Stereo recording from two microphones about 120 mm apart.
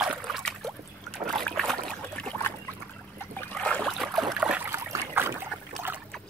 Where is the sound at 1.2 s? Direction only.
5° left (ahead or behind).